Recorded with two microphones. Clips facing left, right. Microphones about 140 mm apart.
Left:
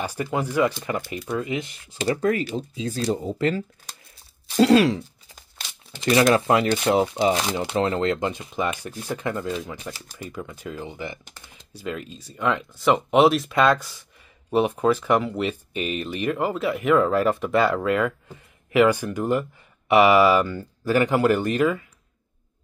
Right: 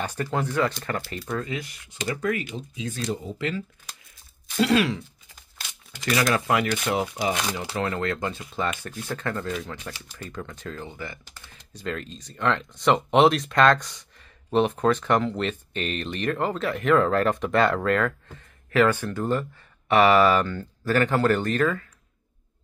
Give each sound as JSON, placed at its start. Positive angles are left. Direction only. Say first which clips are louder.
{"t": 0.0, "sound": "speech", "louder": "left 1 dB", "side_deg": 10}
{"t": 11.3, "sound": "computer keyboard", "louder": "left 1 dB", "side_deg": 20}
{"t": 11.7, "sound": "speech", "louder": "left 1 dB", "side_deg": 10}